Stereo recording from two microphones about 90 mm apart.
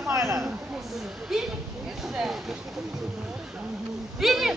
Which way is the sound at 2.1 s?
5° right (ahead or behind).